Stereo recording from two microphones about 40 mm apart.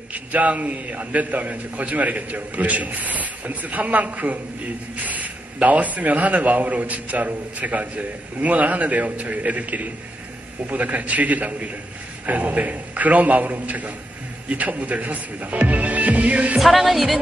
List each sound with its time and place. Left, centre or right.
0.1 s speech: right
16.5 s speech: centre